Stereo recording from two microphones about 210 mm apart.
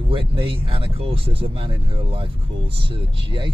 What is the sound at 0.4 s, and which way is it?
Speech, 25° right (ahead or behind).